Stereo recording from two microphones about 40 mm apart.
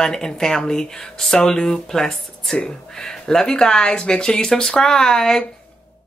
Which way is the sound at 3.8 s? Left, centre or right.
Left.